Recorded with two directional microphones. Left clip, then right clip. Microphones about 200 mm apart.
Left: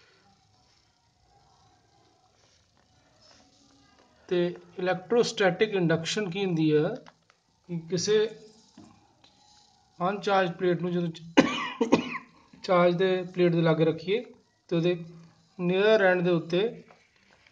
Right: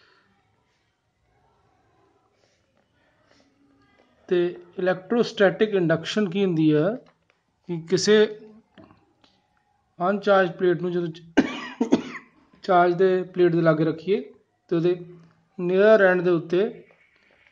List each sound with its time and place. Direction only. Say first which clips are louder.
4.3 s speech: right 5 dB; 25° right (ahead or behind)
7.6 s speech: right 8 dB; 45° right (ahead or behind)
9.9 s a man's voice: right 6 dB; 25° right (ahead or behind)